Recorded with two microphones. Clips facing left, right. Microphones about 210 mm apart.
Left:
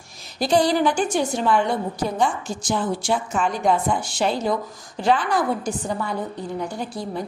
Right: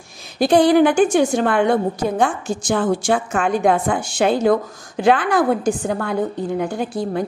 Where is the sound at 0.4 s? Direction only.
60° right (ahead or behind).